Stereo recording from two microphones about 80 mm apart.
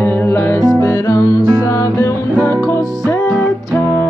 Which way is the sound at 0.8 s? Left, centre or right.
Left.